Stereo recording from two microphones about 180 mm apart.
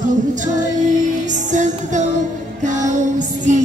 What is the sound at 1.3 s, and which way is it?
Music, 45° right (ahead or behind).